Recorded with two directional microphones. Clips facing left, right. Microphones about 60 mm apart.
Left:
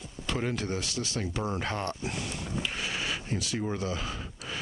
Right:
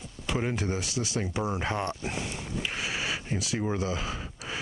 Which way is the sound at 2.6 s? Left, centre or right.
Centre.